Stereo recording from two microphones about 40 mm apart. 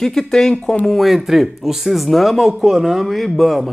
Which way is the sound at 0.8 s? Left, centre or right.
Centre.